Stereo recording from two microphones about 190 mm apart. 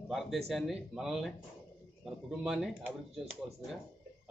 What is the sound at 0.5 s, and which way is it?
A man's voice, centre (ahead or behind).